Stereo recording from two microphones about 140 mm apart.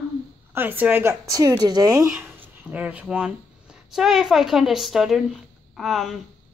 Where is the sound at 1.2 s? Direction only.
25° right (ahead or behind).